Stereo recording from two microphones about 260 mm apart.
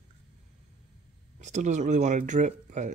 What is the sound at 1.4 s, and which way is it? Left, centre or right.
Speech, right.